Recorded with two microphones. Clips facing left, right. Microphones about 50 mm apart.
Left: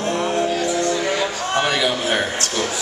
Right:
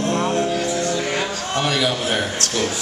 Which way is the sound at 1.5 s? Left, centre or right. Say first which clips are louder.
Left 1 dB; centre.